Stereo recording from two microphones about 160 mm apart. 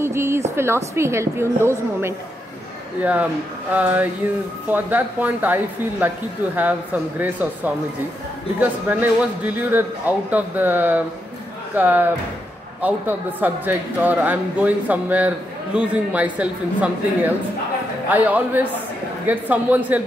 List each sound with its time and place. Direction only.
0.0 s a sound: 15° right (ahead or behind)
0.6 s speech: 15° right (ahead or behind)
3.0 s speech: 10° right (ahead or behind)